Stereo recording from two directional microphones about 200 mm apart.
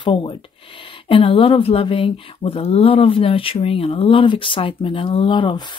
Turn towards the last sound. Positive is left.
turn(degrees=25)  # may be behind; listen again after turning